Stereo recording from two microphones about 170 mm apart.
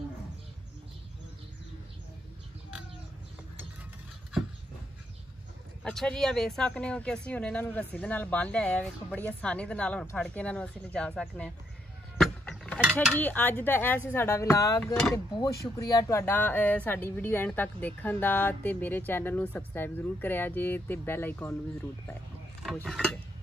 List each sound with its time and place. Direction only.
5.9 s speech: 5° left (ahead or behind)
12.2 s vehicle: 5° left (ahead or behind)
13.0 s speech: 5° left (ahead or behind)
22.8 s speech: 5° left (ahead or behind)